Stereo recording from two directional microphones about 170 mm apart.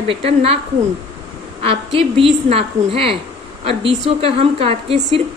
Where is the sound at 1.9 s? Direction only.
35° right (ahead or behind).